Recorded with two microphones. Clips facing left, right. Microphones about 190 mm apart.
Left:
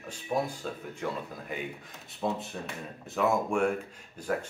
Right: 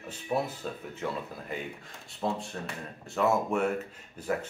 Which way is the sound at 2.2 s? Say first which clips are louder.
Even; centre (ahead or behind).